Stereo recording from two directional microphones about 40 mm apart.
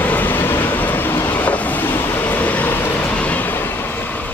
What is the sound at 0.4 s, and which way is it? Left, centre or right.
Vehicle, left.